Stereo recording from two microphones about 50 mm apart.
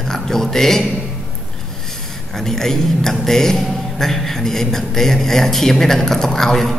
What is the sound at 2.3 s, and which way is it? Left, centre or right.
A man's voice, centre.